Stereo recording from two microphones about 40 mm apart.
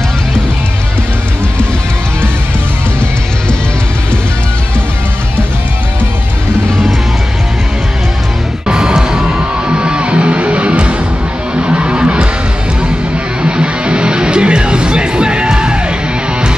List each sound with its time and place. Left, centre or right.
8.6 s music: centre
13.4 s music: right